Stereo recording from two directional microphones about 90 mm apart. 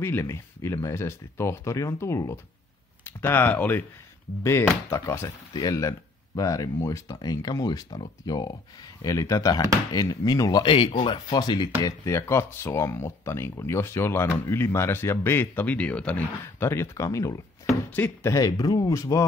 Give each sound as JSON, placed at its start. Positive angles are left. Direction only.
{"t": 0.0, "sound": "speech", "side_deg": 30}
{"t": 5.5, "sound": "speech", "side_deg": 45}
{"t": 7.2, "sound": "speech", "side_deg": 45}
{"t": 9.0, "sound": "speech", "side_deg": 40}
{"t": 10.6, "sound": "speech", "side_deg": 65}
{"t": 11.3, "sound": "speech", "side_deg": 55}
{"t": 17.9, "sound": "speech", "side_deg": 20}
{"t": 18.3, "sound": "speech", "side_deg": 45}